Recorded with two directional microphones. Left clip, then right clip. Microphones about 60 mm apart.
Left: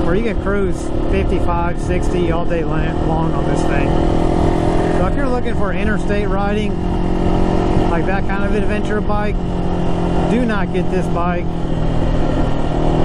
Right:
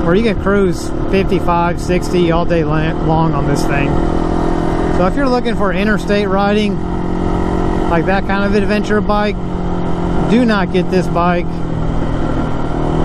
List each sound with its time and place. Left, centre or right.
0.1 s speech: right
5.0 s speech: right
7.9 s speech: right
10.3 s speech: right